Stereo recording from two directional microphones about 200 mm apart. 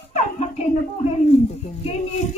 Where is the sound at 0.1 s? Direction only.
35° left (ahead or behind).